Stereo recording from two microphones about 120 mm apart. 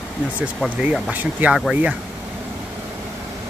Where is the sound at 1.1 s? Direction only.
15° right (ahead or behind).